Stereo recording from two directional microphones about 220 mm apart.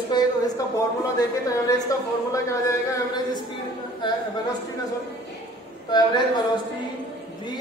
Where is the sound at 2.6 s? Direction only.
15° left (ahead or behind).